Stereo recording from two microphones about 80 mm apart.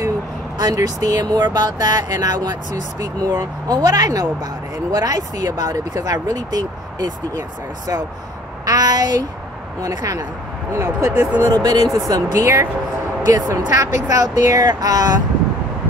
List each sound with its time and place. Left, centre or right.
0.6 s speech: right
11.3 s speech: right